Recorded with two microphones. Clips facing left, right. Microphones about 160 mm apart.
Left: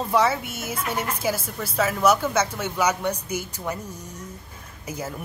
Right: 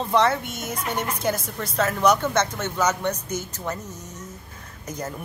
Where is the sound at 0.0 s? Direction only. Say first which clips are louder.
Right 1 dB; 5° left (ahead or behind).